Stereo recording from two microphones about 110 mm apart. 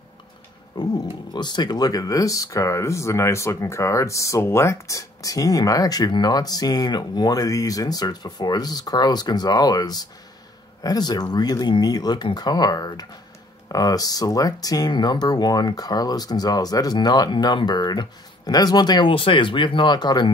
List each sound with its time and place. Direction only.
0.7 s speech: 40° left (ahead or behind)